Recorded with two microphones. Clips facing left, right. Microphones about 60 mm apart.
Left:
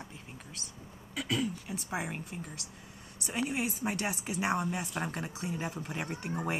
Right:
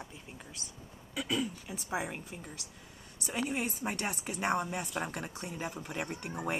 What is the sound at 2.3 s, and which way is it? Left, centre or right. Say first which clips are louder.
Speech: left 3 dB; centre.